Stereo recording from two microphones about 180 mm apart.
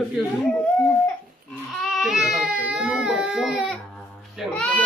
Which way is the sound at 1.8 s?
Centre (ahead or behind).